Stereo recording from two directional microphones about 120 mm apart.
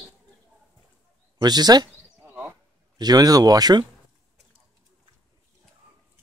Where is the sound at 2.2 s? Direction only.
10° right (ahead or behind).